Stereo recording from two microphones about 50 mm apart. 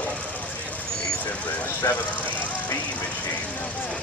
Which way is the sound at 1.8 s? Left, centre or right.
Left.